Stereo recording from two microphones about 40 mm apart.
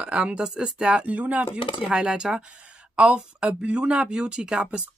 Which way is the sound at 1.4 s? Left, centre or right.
Right.